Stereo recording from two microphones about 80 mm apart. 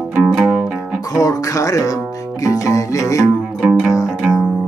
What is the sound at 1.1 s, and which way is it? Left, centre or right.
Music, left.